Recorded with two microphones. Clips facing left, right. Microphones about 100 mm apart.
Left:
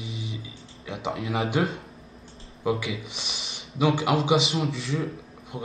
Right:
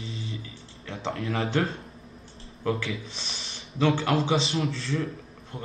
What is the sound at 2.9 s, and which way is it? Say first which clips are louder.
Speech: left 1 dB; 30° right (ahead or behind).